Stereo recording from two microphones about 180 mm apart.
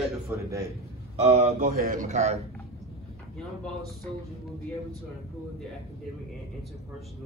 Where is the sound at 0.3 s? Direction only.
10° right (ahead or behind).